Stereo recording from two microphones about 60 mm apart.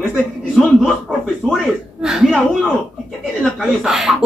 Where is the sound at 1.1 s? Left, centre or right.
Centre.